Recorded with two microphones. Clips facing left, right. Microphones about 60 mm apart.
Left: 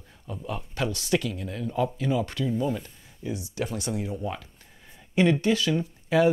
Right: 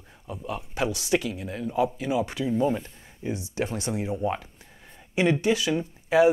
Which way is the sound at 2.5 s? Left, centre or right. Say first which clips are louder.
Right 3 dB; right.